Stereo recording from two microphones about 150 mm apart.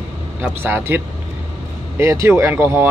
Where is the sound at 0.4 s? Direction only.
15° right (ahead or behind).